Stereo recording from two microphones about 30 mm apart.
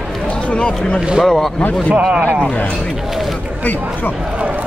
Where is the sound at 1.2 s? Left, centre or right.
Centre.